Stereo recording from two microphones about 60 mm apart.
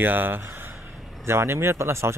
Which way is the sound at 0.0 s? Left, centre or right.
Right.